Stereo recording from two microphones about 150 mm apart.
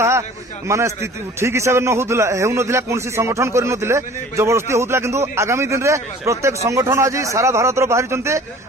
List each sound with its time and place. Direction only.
0.7 s a man's voice: 20° right (ahead or behind)